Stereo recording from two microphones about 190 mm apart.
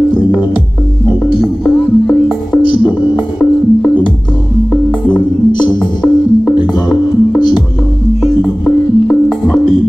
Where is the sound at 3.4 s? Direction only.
5° right (ahead or behind).